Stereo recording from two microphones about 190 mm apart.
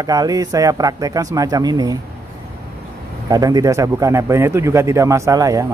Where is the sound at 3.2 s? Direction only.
20° right (ahead or behind).